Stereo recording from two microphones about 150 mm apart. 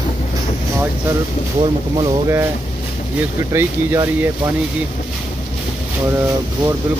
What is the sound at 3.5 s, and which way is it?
Speech, 15° right (ahead or behind).